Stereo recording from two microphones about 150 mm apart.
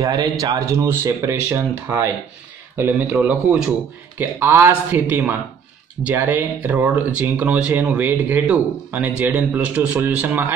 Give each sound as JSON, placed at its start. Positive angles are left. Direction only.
{"t": 0.0, "sound": "speech", "side_deg": -25}